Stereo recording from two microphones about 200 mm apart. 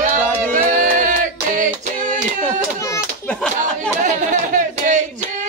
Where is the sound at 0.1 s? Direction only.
40° right (ahead or behind).